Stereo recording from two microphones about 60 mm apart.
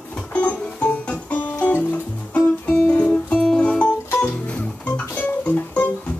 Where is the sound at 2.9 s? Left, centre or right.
Centre.